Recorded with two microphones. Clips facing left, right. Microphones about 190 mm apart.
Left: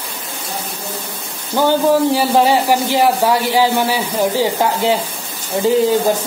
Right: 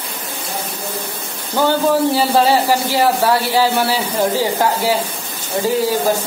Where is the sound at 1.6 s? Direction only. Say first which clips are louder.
Left 2 dB; 15° left (ahead or behind).